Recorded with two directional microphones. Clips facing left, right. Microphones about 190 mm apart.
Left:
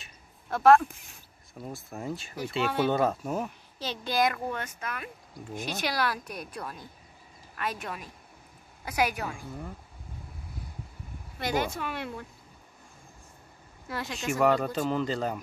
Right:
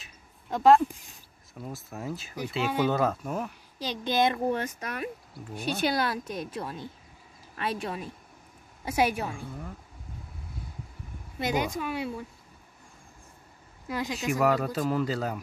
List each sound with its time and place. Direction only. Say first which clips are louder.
0.5 s speech: even; 15° right (ahead or behind)
1.5 s speech: even; centre (ahead or behind)
3.8 s speech: right 2 dB; 15° right (ahead or behind)
9.5 s speech: left 1 dB; 5° left (ahead or behind)
11.4 s speech: right 1 dB; 15° right (ahead or behind)
13.8 s speech: right 4 dB; 15° right (ahead or behind)
14.1 s speech: left 1 dB; 5° right (ahead or behind)